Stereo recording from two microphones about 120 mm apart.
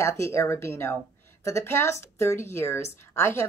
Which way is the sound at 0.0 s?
25° left (ahead or behind).